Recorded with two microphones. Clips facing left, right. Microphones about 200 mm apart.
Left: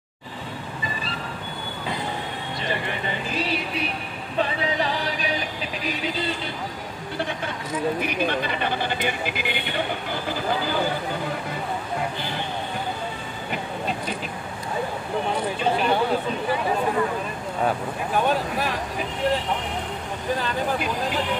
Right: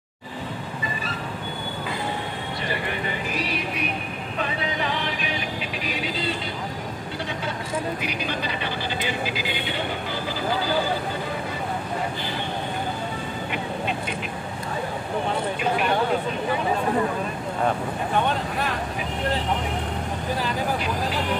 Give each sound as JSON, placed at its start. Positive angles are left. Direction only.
{"t": 3.3, "sound": "music", "side_deg": 30}
{"t": 8.3, "sound": "speech", "side_deg": 55}
{"t": 17.6, "sound": "speech", "side_deg": 5}